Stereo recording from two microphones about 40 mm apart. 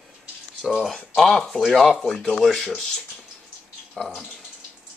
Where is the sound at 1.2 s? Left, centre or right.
Centre.